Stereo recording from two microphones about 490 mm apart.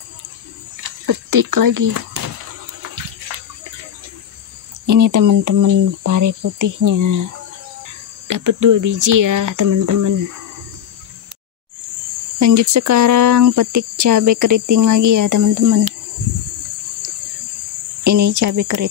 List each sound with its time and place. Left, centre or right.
0.8 s speech: right
4.8 s speech: right
8.3 s speech: right
12.4 s speech: right
18.0 s speech: right